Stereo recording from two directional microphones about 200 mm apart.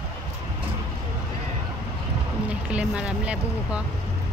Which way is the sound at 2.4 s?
5° right (ahead or behind).